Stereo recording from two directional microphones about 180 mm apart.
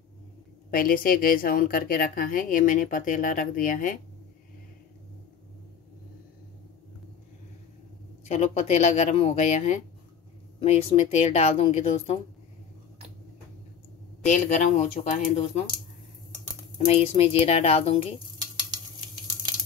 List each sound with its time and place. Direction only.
0.7 s a woman's voice: 55° left (ahead or behind)
8.3 s speech: 35° left (ahead or behind)
14.3 s a woman's voice: 45° left (ahead or behind)
16.7 s speech: 35° left (ahead or behind)